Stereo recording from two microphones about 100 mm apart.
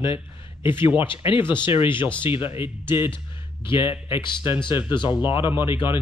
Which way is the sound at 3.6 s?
55° left (ahead or behind).